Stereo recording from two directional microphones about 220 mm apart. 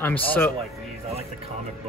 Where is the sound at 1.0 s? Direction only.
25° right (ahead or behind).